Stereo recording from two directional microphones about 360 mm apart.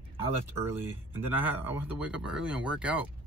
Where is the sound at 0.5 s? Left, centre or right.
Centre.